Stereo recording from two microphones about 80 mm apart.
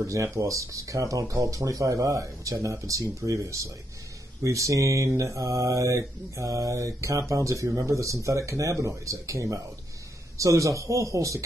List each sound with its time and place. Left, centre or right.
0.0 s mantra: right